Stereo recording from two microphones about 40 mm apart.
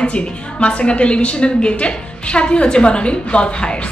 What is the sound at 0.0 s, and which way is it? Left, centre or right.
A woman's voice, left.